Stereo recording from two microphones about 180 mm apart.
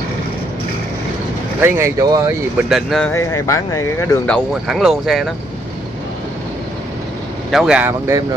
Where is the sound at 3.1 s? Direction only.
15° left (ahead or behind).